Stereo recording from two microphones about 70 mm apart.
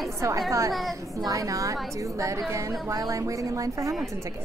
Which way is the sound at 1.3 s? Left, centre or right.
Right.